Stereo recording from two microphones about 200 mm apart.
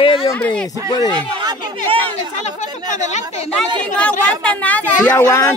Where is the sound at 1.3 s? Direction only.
20° right (ahead or behind).